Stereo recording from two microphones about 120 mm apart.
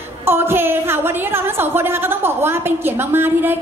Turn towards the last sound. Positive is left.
turn(degrees=-20)  # may be behind; listen again after turning